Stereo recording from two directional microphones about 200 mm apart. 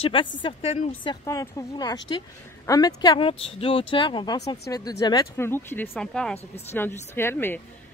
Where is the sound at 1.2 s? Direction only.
15° left (ahead or behind).